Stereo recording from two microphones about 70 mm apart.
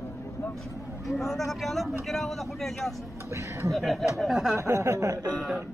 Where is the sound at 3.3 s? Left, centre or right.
Right.